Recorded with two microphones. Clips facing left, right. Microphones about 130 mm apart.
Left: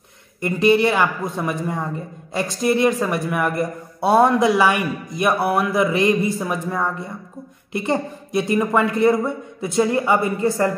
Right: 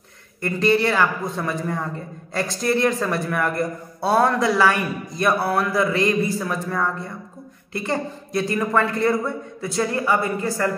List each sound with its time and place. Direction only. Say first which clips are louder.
0.4 s a man's voice: left 3 dB; 15° left (ahead or behind)